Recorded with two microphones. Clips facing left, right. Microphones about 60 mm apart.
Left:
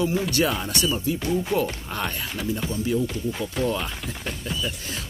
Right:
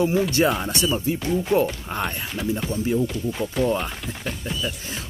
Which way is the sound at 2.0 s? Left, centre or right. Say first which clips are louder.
Right 1 dB; centre.